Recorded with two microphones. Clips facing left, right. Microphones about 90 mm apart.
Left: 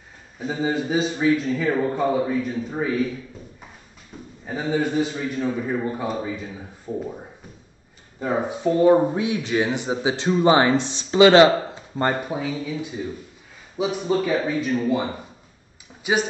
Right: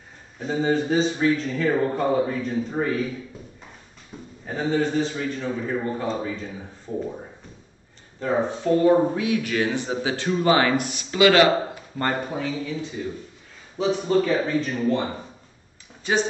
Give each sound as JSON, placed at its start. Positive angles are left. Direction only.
{"t": 0.4, "sound": "a man's voice", "side_deg": 5}
{"t": 4.1, "sound": "a sound", "side_deg": 0}
{"t": 4.5, "sound": "a man's voice", "side_deg": 5}
{"t": 8.2, "sound": "speech", "side_deg": 10}
{"t": 12.3, "sound": "a man's voice", "side_deg": 10}